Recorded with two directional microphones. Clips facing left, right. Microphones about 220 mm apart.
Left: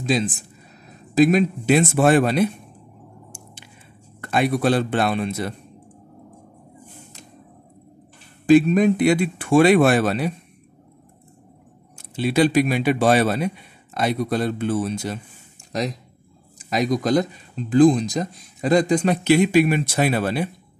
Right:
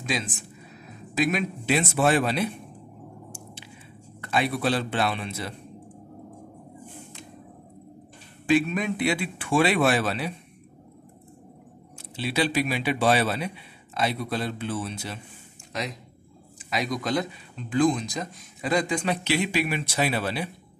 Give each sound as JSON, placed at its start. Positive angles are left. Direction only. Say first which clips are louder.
{"t": 0.0, "sound": "speech", "louder": "left 8 dB", "side_deg": 35}
{"t": 3.3, "sound": "a sound", "louder": "right 2 dB", "side_deg": 45}
{"t": 4.2, "sound": "speech", "louder": "left 6 dB", "side_deg": 50}
{"t": 8.5, "sound": "speech", "louder": "left 9 dB", "side_deg": 40}
{"t": 12.2, "sound": "speech", "louder": "left 8 dB", "side_deg": 50}